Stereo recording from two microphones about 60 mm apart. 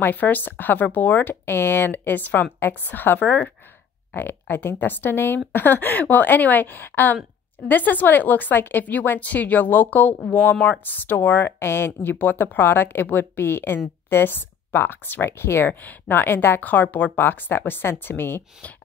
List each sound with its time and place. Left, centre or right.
0.0 s speech: left
1.3 s a woman's voice: left
15.7 s speech: left